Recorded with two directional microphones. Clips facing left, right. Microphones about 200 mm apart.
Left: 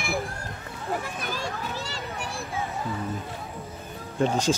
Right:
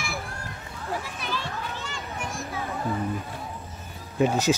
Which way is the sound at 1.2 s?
45° left (ahead or behind).